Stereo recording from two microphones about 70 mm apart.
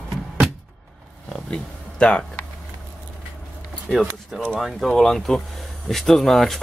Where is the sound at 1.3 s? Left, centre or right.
Centre.